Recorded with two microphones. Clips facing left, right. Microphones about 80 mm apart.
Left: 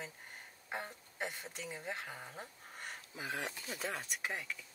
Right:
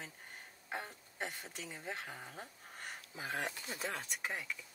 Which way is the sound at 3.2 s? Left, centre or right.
Right.